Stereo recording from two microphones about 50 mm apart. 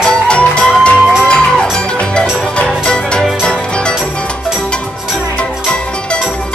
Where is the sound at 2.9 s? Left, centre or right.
Centre.